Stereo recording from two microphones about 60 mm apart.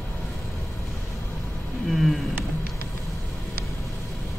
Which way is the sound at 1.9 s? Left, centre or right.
Centre.